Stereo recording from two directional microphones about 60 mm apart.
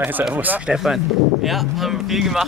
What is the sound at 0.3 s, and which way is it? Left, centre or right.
Speech, right.